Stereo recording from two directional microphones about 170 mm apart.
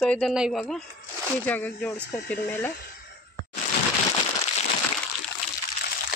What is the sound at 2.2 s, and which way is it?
Speech, 65° left (ahead or behind).